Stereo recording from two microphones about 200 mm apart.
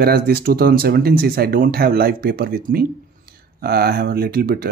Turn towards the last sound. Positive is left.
turn(degrees=-50)  # may be behind; listen again after turning